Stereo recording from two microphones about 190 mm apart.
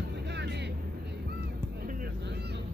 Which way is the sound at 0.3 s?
65° right (ahead or behind).